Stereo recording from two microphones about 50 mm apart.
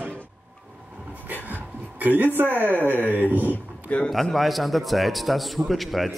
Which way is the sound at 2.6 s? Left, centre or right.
Right.